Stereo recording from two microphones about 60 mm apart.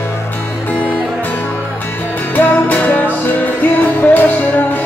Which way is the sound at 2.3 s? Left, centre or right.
Left.